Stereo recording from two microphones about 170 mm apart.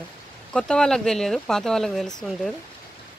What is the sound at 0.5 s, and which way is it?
Speech, 5° left (ahead or behind).